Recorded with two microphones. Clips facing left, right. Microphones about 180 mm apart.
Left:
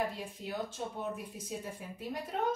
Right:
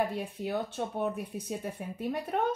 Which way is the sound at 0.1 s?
60° right (ahead or behind).